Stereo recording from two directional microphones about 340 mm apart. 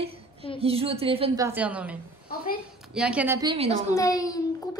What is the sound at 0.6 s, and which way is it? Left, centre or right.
A woman's voice, centre.